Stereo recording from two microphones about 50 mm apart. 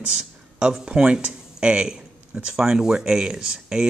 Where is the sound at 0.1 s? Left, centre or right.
Centre.